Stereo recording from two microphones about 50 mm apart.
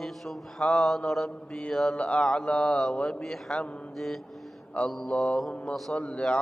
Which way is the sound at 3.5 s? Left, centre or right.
Left.